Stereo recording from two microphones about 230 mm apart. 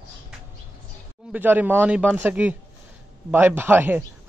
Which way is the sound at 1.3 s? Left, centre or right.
Centre.